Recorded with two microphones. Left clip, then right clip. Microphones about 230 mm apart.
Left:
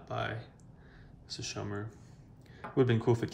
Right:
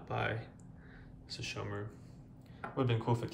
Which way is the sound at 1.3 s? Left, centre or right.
Left.